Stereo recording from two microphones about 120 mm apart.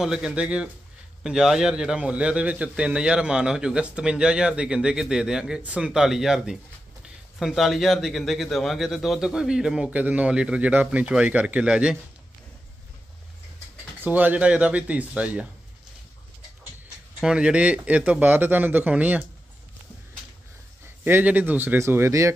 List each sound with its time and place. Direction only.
0.0 s a man's voice: 5° right (ahead or behind)
14.0 s a man's voice: 15° right (ahead or behind)
17.2 s a man's voice: 5° right (ahead or behind)
21.0 s a man's voice: 15° right (ahead or behind)